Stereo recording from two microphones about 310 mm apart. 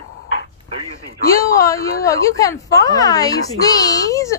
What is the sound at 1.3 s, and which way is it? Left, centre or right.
A woman's voice, centre.